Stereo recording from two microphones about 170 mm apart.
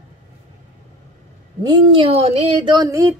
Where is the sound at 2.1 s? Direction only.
35° right (ahead or behind); by 3.2 s 15° right (ahead or behind).